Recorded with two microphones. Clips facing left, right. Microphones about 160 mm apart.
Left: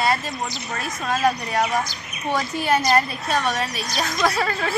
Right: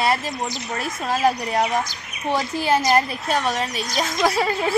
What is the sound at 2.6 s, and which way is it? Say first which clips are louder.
Speech: right 1 dB; 25° right (ahead or behind).